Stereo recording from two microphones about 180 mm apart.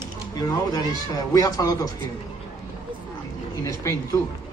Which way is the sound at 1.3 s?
20° left (ahead or behind).